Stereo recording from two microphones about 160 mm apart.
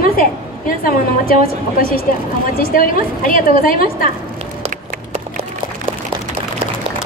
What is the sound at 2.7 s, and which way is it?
A woman's voice, 60° left (ahead or behind).